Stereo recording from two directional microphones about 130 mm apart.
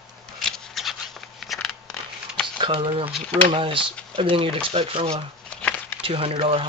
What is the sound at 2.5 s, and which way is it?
Speech, 40° right (ahead or behind).